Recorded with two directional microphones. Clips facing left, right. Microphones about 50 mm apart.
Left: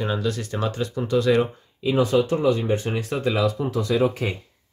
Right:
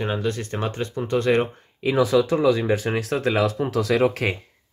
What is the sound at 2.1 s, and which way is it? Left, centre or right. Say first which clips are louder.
Speech: right 1 dB; right.